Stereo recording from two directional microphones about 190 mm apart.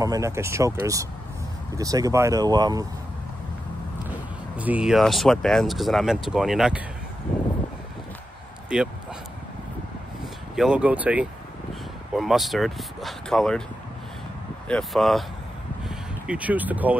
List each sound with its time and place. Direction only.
0.0 s speech: 15° right (ahead or behind)
4.6 s speech: 5° right (ahead or behind)
10.5 s speech: 5° right (ahead or behind)
14.7 s speech: centre (ahead or behind)
15.8 s a sound: 5° right (ahead or behind)